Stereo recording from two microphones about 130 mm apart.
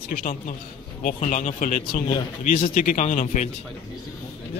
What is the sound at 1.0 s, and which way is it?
Speech, 75° left (ahead or behind).